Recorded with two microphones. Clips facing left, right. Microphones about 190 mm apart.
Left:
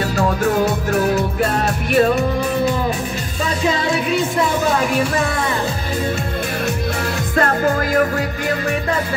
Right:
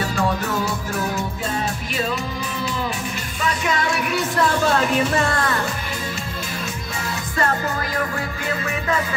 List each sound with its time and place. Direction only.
0.9 s music: 70° left (ahead or behind)
2.0 s music: 55° left (ahead or behind)
3.6 s music: 25° left (ahead or behind); by 5.5 s 10° left (ahead or behind)
7.3 s music: 65° left (ahead or behind)